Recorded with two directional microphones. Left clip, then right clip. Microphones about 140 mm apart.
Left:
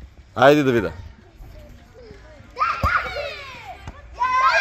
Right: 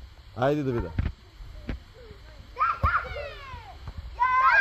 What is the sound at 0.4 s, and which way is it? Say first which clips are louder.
Speech: left 12 dB; 45° left (ahead or behind).